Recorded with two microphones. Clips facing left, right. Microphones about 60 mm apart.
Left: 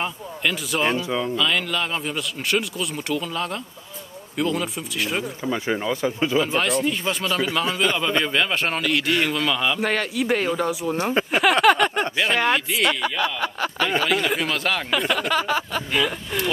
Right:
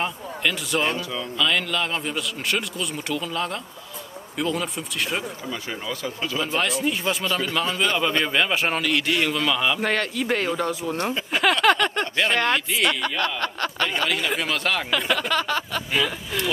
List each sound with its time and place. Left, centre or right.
0.0 s speech: centre
1.0 s speech: left
1.3 s speech: centre
5.4 s speech: left
6.4 s speech: centre
11.6 s a sound: centre
12.2 s speech: centre